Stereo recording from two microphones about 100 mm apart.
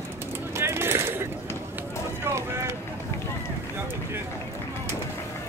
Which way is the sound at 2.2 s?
25° right (ahead or behind).